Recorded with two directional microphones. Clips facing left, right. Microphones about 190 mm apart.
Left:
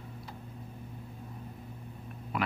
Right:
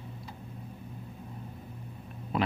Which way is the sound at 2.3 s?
25° right (ahead or behind).